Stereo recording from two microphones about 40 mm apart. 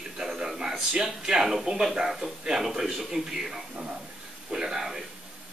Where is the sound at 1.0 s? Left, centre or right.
Centre.